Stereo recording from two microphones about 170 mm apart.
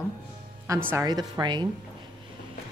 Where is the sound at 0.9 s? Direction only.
25° right (ahead or behind).